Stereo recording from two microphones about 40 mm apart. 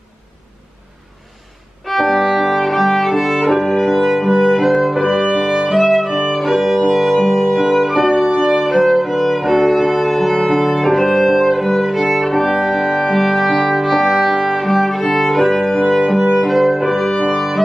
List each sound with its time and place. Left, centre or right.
1.9 s music: centre
3.6 s music: centre
5.0 s music: centre
5.7 s music: centre
6.3 s violin: centre
6.9 s music: centre
8.4 s violin: centre
12.6 s music: centre